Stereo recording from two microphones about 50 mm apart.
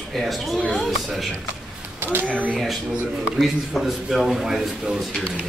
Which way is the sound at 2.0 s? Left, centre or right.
Right.